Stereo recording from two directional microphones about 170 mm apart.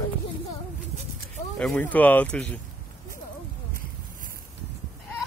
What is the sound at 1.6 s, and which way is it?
Speech, 5° left (ahead or behind).